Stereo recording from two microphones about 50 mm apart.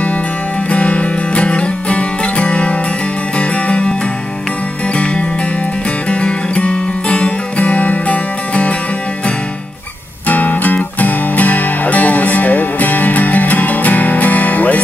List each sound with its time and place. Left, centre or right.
0.7 s music: left
4.9 s music: left
10.2 s music: left